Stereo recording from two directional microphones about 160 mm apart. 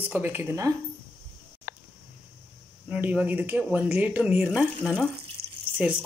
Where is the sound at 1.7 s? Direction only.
60° left (ahead or behind).